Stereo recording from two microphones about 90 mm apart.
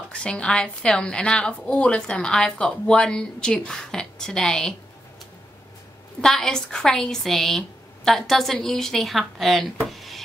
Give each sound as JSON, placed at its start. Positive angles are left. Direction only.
{"t": 0.1, "sound": "a woman's voice", "side_deg": 10}
{"t": 6.2, "sound": "speech", "side_deg": 5}
{"t": 9.8, "sound": "a sound", "side_deg": 0}